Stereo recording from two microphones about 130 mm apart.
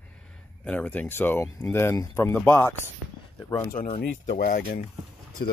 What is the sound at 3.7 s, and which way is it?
Speech, 70° left (ahead or behind).